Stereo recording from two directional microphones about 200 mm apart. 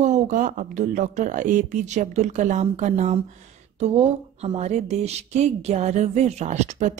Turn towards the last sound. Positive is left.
turn(degrees=-35)  # may be behind; listen again after turning